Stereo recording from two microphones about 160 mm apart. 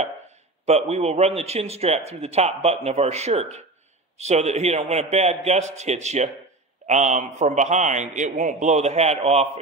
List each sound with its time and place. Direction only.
0.7 s a man's voice: 40° right (ahead or behind)